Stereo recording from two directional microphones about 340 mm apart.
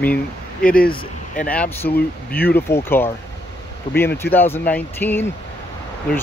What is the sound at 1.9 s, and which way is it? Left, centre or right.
Speech, left.